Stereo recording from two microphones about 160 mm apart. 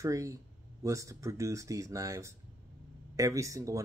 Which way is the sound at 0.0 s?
20° right (ahead or behind).